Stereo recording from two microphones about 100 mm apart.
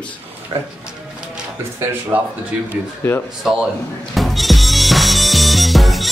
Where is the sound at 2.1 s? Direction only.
20° right (ahead or behind).